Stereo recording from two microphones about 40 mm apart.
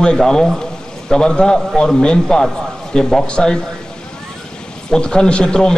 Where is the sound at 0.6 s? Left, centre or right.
Centre.